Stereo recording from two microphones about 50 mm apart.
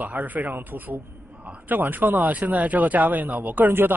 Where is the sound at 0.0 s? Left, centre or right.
Right.